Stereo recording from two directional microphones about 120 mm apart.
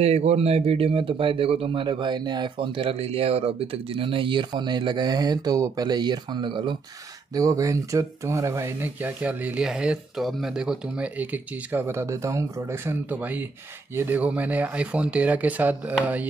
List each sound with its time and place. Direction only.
0.0 s speech: 65° right (ahead or behind); by 6.8 s 40° right (ahead or behind)
7.3 s speech: 30° right (ahead or behind); by 16.3 s 15° right (ahead or behind)